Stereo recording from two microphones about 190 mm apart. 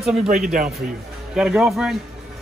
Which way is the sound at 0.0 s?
Centre (ahead or behind).